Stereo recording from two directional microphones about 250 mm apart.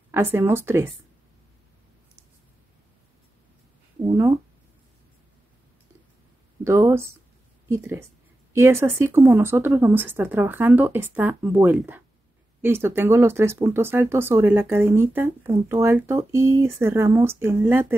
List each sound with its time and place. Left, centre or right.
0.1 s speech: centre
4.1 s a sound: centre
6.6 s speech: centre